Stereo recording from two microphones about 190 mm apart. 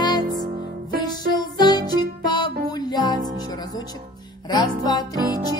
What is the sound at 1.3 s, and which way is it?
Music, 20° left (ahead or behind).